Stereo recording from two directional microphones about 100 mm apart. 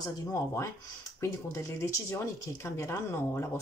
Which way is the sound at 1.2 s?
30° left (ahead or behind).